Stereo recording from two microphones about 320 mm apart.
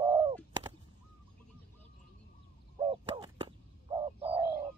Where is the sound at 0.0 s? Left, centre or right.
Centre.